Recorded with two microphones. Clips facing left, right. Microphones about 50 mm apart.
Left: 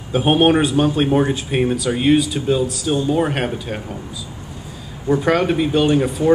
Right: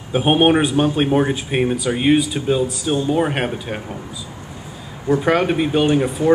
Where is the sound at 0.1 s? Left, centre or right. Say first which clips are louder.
Even; centre.